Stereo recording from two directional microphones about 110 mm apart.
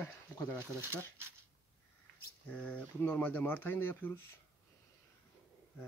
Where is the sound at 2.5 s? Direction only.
10° left (ahead or behind).